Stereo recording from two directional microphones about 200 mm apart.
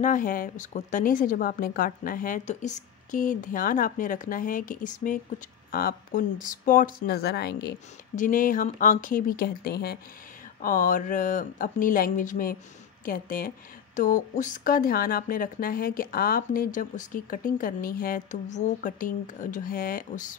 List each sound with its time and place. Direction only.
0.0 s speech: 45° left (ahead or behind)
8.2 s speech: 40° left (ahead or behind)